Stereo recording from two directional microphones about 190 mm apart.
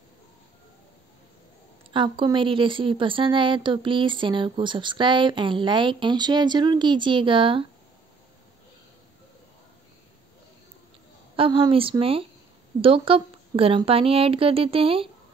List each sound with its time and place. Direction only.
1.9 s speech: 25° right (ahead or behind)
11.3 s speech: 30° right (ahead or behind)